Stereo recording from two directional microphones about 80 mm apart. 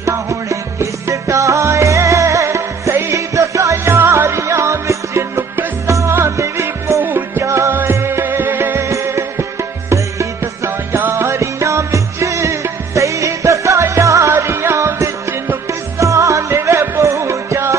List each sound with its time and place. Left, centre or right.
0.0 s music: right